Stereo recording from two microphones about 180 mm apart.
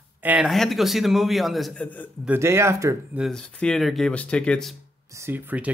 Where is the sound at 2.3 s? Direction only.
15° right (ahead or behind).